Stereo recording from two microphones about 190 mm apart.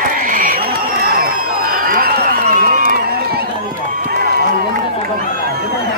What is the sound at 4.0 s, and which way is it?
Run, 55° right (ahead or behind).